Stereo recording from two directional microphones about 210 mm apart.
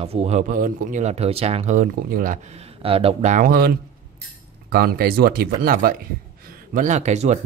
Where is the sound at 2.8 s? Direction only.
25° right (ahead or behind); by 3.7 s 45° right (ahead or behind).